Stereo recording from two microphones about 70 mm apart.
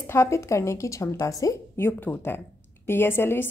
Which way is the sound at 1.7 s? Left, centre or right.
Left.